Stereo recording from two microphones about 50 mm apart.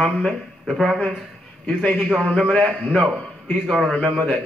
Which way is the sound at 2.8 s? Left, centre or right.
Centre.